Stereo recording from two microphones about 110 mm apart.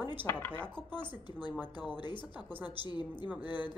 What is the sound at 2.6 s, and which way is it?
A woman's voice, 40° left (ahead or behind).